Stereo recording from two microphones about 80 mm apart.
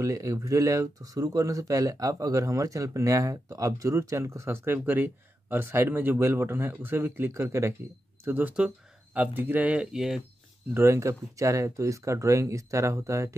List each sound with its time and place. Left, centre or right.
0.0 s speech: right
8.3 s speech: right
9.8 s speech: centre
10.7 s speech: right